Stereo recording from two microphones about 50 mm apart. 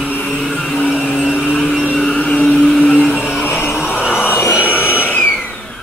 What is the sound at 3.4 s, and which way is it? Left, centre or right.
Music, left.